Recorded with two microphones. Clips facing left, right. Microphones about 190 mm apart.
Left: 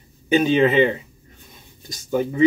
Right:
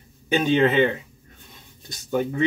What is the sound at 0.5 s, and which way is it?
Speech, 5° left (ahead or behind).